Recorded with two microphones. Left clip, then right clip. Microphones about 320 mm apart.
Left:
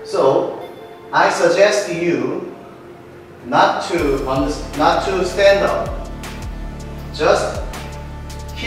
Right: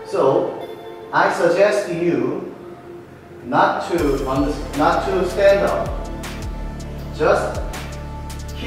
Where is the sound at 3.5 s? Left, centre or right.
Centre.